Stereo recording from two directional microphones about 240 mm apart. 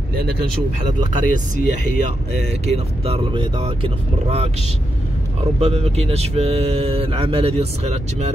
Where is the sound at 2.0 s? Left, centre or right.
Right.